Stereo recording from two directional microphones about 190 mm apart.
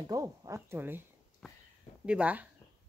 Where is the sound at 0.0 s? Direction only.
20° right (ahead or behind).